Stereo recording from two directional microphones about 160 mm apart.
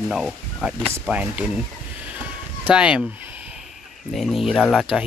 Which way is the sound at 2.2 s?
10° right (ahead or behind).